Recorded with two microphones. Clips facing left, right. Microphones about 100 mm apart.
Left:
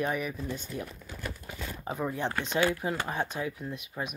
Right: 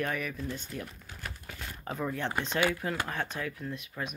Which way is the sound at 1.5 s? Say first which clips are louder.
Left 1 dB; 15° left (ahead or behind).